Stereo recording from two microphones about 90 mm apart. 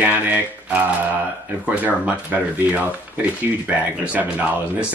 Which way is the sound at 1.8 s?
15° right (ahead or behind).